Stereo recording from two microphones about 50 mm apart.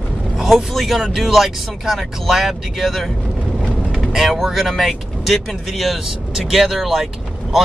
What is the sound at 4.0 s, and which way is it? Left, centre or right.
Vehicle, centre.